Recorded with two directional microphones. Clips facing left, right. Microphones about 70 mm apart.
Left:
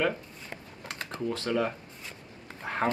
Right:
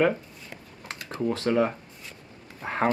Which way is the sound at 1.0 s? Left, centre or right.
Right.